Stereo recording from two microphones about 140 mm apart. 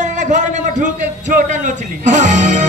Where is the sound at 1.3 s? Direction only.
65° right (ahead or behind).